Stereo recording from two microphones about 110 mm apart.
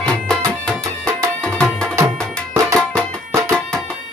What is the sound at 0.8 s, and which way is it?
Music, 25° right (ahead or behind).